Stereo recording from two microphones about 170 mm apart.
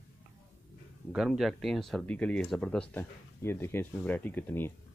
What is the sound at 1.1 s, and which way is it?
Speech, centre (ahead or behind).